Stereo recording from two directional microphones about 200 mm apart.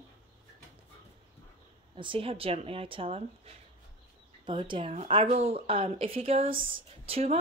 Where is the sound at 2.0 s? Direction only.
25° right (ahead or behind).